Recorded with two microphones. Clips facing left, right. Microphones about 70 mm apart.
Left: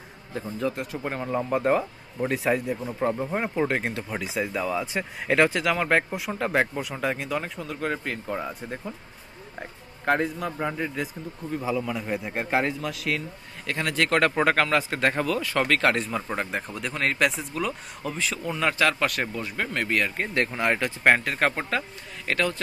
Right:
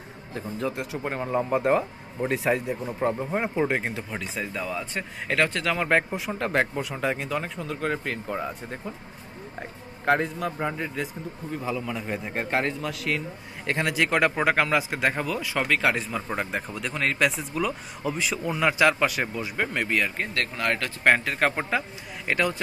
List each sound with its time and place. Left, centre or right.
0.3 s speech: centre
13.7 s a man's voice: right
13.9 s speech: centre
20.3 s speech: centre
21.0 s speech: centre